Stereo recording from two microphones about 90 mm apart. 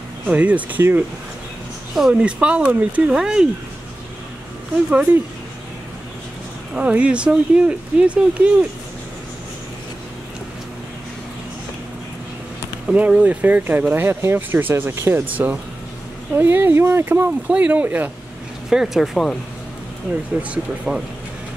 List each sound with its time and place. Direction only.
0.3 s speech: 15° right (ahead or behind)
2.0 s speech: 5° right (ahead or behind)
6.7 s speech: 15° right (ahead or behind)
12.8 s speech: 15° right (ahead or behind)
18.7 s speech: 5° right (ahead or behind)
20.4 s speech: 10° right (ahead or behind)